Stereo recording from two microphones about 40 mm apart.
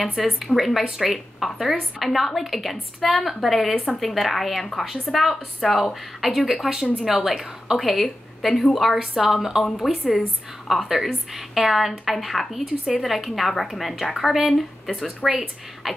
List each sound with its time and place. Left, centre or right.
0.0 s speech: centre
3.7 s speech: left
4.0 s speech: centre